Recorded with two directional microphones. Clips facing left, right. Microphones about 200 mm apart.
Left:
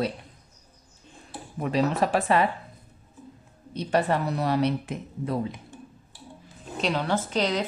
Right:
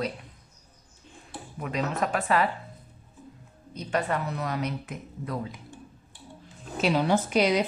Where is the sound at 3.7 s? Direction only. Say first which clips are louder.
Left 4 dB; 30° left (ahead or behind).